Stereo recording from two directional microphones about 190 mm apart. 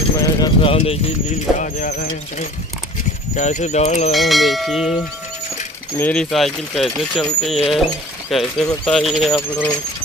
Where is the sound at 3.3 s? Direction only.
40° left (ahead or behind).